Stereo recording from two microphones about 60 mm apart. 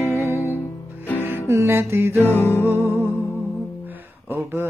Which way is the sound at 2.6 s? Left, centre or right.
Right.